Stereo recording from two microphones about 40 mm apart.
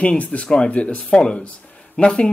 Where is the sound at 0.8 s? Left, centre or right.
Left.